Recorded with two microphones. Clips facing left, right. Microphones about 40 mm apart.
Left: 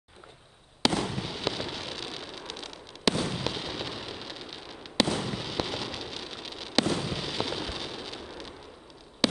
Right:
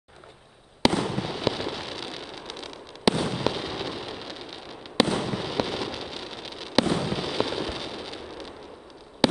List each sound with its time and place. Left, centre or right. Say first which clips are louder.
0.9 s fireworks: right 4 dB; right
1.2 s a sound: right 5 dB; centre
3.2 s fireworks: right 4 dB; centre
5.0 s fireworks: right 3 dB; right
5.3 s fireworks: right 4 dB; centre
7.1 s explosion: right 5 dB; centre
9.2 s a sound: right 5 dB; centre